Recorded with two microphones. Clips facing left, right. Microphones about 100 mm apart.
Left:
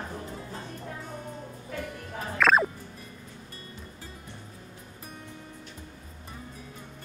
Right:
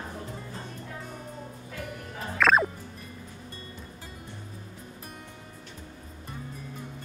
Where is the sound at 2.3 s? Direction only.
Centre (ahead or behind).